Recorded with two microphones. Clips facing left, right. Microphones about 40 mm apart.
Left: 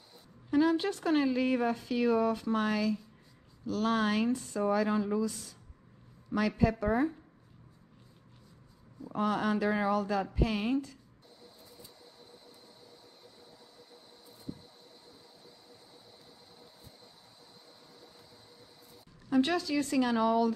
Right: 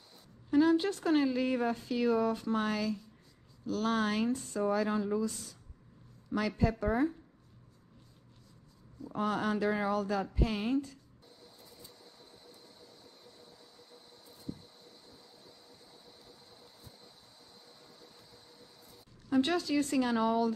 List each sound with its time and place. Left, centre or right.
0.5 s a sound: left
1.0 s speech: left
3.6 s speech: left
6.3 s speech: left
9.1 s speech: left
9.9 s speech: left
12.0 s train: centre
19.3 s speech: left